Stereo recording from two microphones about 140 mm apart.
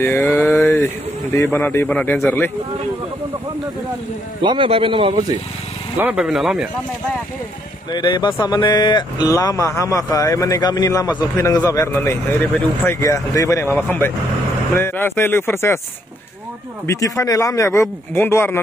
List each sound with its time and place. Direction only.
0.0 s a sound: 15° left (ahead or behind)
1.3 s speech: 15° left (ahead or behind)
4.4 s a man's voice: 35° right (ahead or behind)
5.9 s speech: 10° right (ahead or behind)
7.9 s speech: 30° left (ahead or behind)
16.8 s speech: 25° left (ahead or behind)